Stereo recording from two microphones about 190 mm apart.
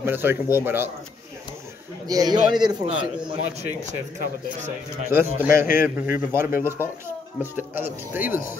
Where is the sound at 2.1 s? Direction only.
20° right (ahead or behind).